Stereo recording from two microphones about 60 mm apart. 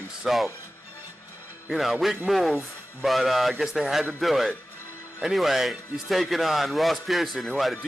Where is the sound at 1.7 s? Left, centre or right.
Centre.